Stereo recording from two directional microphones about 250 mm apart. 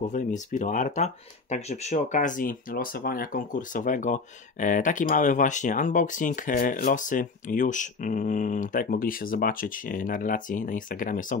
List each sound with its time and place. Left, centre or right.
0.0 s speech: left